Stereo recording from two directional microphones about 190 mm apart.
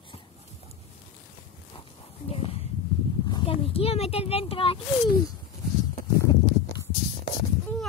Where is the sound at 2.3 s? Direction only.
30° left (ahead or behind).